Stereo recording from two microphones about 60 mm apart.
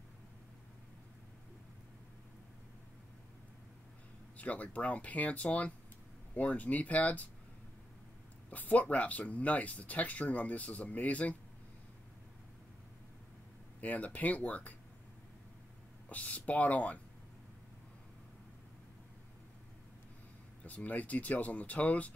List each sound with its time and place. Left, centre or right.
4.4 s speech: left
8.5 s speech: left
13.7 s speech: left
16.1 s speech: left
20.6 s speech: left